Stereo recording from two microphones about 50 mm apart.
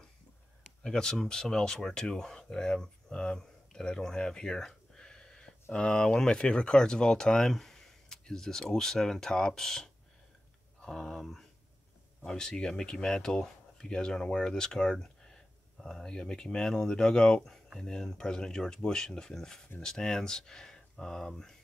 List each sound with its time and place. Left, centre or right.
0.8 s speech: centre